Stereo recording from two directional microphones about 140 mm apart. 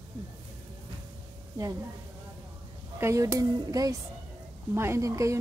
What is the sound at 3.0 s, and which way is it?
Speech, 20° right (ahead or behind).